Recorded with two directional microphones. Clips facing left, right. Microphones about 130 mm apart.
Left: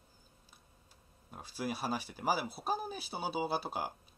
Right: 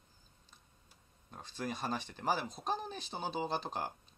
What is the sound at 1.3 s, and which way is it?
Speech, 10° left (ahead or behind).